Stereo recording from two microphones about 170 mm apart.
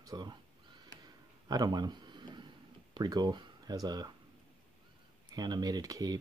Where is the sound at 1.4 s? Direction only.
25° right (ahead or behind).